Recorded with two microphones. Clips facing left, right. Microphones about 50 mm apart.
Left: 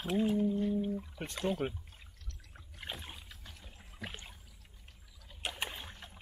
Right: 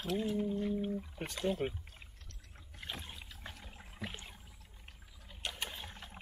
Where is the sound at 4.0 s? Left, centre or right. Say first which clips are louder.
Even; centre.